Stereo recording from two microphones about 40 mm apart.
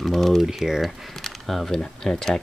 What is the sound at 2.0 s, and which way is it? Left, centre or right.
Speech, centre.